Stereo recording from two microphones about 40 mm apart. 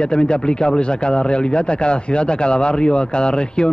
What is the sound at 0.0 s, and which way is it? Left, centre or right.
Speech, left.